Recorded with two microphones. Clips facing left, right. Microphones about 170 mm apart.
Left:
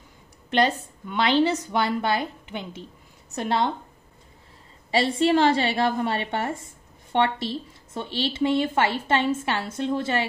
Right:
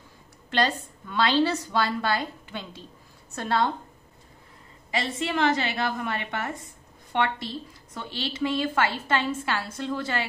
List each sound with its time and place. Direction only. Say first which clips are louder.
0.5 s speech: left 3 dB; 20° left (ahead or behind)
4.9 s a woman's voice: left 8 dB; 30° left (ahead or behind)